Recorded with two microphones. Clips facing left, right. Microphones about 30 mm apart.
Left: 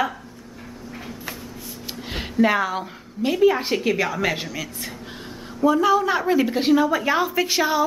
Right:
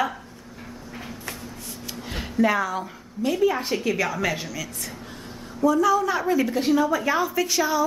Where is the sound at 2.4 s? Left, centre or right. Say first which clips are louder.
Left 2 dB; left.